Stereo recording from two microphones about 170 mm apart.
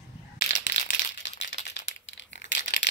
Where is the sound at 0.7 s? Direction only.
90° left.